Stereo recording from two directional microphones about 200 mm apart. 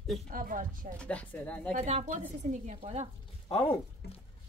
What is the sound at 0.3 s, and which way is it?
Speech, 45° right (ahead or behind).